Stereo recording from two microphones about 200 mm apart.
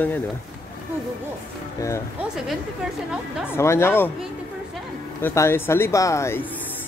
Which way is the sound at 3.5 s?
15° left (ahead or behind).